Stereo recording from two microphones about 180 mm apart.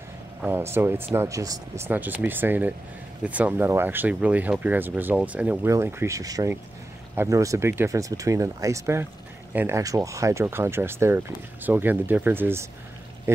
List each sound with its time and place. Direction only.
0.4 s speech: 10° right (ahead or behind)